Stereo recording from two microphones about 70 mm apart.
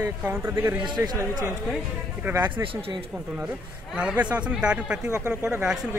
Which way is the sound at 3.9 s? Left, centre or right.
Centre.